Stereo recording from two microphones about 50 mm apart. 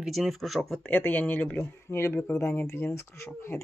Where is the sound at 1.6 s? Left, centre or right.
Left.